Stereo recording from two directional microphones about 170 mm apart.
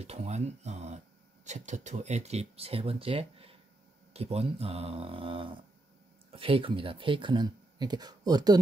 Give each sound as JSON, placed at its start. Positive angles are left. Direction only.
{"t": 0.0, "sound": "speech", "side_deg": -40}